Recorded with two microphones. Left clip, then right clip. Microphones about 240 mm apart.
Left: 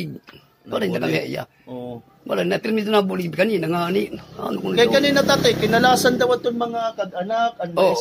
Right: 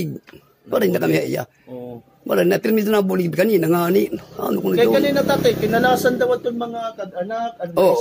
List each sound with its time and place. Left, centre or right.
0.7 s speech: right
4.7 s speech: centre